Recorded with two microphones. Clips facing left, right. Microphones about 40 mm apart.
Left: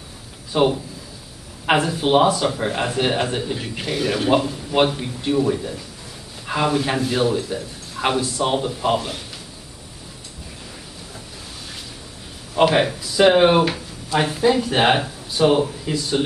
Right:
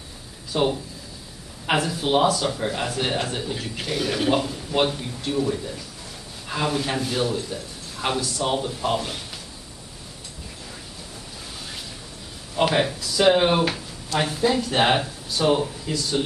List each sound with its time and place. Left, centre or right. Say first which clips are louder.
0.5 s speech: left 4 dB; centre
4.7 s a man's voice: left 4 dB; centre
12.7 s speech: left 4 dB; centre